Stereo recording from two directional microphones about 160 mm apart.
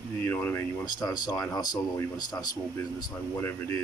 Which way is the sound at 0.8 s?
25° left (ahead or behind).